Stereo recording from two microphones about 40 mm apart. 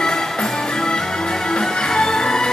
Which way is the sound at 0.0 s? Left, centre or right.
Centre.